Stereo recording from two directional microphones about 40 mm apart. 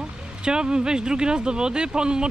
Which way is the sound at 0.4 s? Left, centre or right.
Right.